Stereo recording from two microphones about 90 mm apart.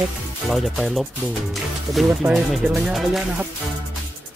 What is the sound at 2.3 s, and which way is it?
Speech, centre (ahead or behind).